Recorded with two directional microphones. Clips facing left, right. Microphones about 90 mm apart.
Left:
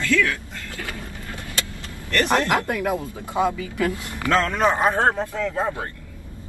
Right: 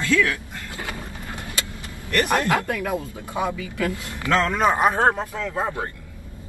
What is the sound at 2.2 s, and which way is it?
Speech, 25° left (ahead or behind).